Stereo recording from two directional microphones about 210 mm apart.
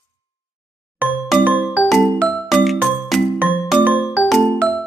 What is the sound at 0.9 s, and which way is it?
Ding-dong, 5° right (ahead or behind).